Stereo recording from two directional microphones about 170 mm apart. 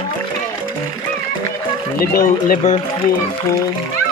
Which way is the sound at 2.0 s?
60° left (ahead or behind).